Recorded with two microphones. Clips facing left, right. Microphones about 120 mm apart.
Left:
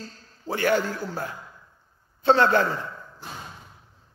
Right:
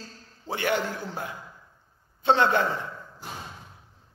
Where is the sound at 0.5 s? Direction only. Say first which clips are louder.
Left 4 dB; 20° right (ahead or behind).